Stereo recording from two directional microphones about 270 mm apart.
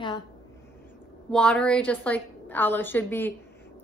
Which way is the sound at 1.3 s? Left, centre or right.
Centre.